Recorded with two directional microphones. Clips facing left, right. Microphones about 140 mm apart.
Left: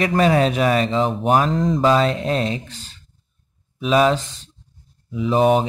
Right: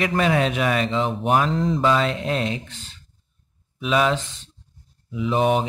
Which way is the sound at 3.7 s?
35° left (ahead or behind).